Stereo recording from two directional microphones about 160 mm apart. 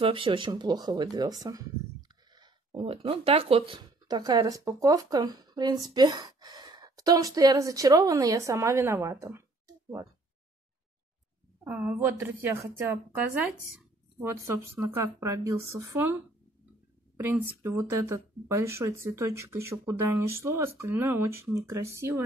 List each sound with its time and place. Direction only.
0.0 s speech: 30° right (ahead or behind)
11.6 s speech: 10° right (ahead or behind)
14.4 s speech: 15° right (ahead or behind)
17.2 s speech: 15° right (ahead or behind)